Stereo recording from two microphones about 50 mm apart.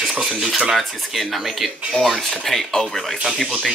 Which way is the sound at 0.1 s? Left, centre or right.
Centre.